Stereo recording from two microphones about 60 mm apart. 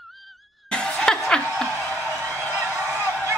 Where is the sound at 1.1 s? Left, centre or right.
Centre.